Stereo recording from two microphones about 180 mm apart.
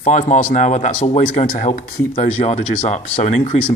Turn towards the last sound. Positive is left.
turn(degrees=40)  # may be behind; listen again after turning